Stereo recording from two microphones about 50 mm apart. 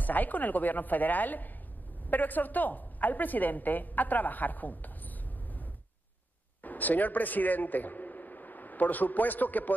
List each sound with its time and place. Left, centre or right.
0.0 s a woman's voice: left